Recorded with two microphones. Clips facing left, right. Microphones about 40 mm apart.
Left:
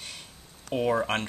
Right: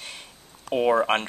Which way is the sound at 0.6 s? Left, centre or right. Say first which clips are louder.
Right 5 dB; right.